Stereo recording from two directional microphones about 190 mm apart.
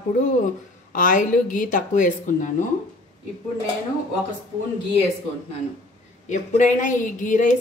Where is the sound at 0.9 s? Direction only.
45° left (ahead or behind).